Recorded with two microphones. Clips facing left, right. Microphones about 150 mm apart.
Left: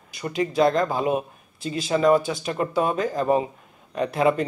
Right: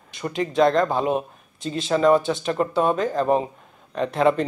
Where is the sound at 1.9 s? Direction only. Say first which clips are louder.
Right 1 dB; 35° right (ahead or behind).